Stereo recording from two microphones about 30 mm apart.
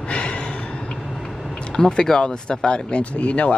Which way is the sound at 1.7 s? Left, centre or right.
Left.